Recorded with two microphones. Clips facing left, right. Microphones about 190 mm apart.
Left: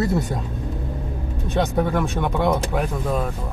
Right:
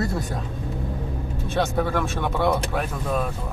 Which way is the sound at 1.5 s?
15° left (ahead or behind).